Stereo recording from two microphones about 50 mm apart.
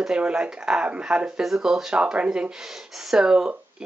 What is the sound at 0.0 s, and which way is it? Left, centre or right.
Speech, centre.